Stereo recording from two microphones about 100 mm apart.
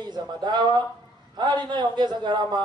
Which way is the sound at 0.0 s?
45° right (ahead or behind).